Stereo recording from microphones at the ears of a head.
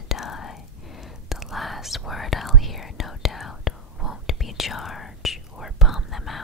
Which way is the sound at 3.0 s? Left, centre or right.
Left.